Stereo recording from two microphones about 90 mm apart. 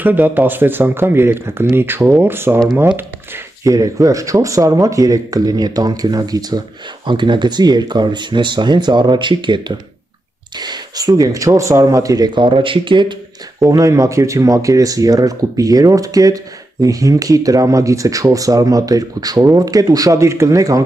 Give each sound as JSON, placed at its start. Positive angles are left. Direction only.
{"t": 0.0, "sound": "speech", "side_deg": -20}
{"t": 3.6, "sound": "speech", "side_deg": -40}
{"t": 7.1, "sound": "speech", "side_deg": -60}
{"t": 10.6, "sound": "speech", "side_deg": -50}
{"t": 12.4, "sound": "speech", "side_deg": -70}
{"t": 13.7, "sound": "speech", "side_deg": -40}